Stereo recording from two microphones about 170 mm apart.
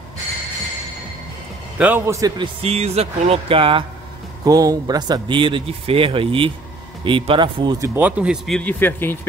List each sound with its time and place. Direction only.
1.8 s a man's voice: 10° right (ahead or behind); by 3.8 s 30° right (ahead or behind)
4.5 s speech: 20° right (ahead or behind)
7.9 s speech: 10° right (ahead or behind); by 9.2 s 10° left (ahead or behind)